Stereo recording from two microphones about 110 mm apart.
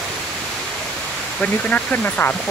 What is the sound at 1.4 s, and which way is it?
Speech, 15° left (ahead or behind).